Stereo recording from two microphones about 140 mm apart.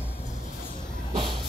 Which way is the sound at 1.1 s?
35° right (ahead or behind).